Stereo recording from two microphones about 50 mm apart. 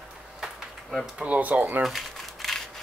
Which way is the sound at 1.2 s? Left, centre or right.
Right.